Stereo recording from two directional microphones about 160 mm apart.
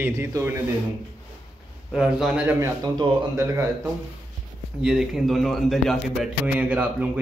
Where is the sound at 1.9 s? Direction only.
5° right (ahead or behind).